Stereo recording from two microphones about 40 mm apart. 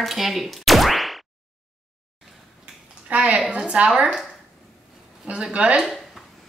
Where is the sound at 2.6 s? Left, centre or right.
Right.